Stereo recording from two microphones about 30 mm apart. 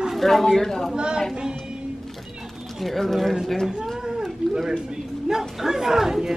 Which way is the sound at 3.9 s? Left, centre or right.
Centre.